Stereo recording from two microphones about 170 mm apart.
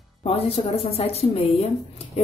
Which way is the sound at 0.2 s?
35° left (ahead or behind).